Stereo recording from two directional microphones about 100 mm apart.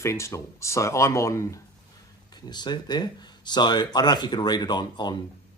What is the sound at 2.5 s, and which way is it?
Speech, 45° left (ahead or behind).